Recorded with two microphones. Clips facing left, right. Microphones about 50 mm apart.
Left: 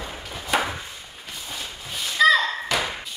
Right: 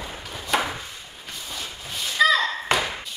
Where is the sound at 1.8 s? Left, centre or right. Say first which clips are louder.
Left 2 dB; centre.